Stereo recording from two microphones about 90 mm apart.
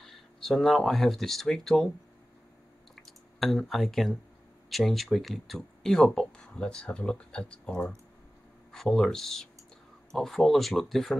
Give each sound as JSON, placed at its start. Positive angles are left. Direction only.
{"t": 0.0, "sound": "speech", "side_deg": 5}
{"t": 3.0, "sound": "speech", "side_deg": 0}